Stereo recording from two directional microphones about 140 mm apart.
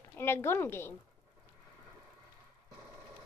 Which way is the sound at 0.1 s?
15° left (ahead or behind).